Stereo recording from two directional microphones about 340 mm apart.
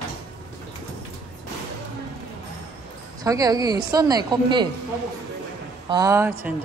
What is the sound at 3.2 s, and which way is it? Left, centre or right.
A woman's voice, centre.